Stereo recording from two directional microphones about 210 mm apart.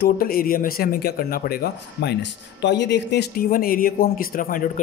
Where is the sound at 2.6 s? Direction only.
55° left (ahead or behind).